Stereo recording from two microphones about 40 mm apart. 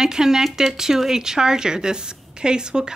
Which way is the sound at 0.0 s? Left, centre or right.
Centre.